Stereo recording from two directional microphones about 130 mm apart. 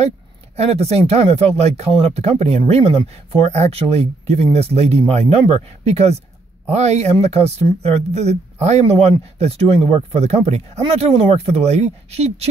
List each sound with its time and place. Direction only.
0.6 s speech: 50° right (ahead or behind)